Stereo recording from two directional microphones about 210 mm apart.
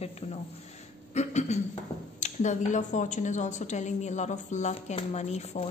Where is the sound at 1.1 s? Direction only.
35° left (ahead or behind).